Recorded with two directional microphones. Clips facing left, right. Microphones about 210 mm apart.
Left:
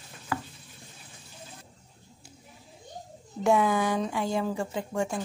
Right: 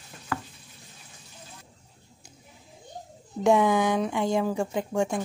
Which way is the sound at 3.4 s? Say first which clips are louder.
Right 3 dB; 20° right (ahead or behind).